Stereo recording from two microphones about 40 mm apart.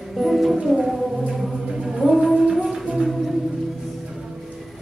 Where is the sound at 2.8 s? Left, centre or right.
Centre.